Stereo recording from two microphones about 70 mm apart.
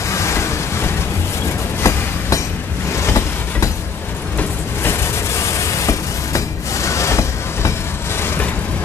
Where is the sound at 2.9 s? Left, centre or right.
Left.